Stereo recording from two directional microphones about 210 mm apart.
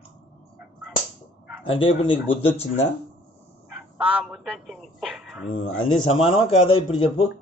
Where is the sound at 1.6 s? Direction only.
25° left (ahead or behind).